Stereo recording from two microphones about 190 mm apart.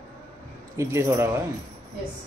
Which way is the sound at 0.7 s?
15° right (ahead or behind).